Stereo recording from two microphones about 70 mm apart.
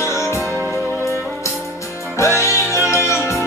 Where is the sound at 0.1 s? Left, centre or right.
Left.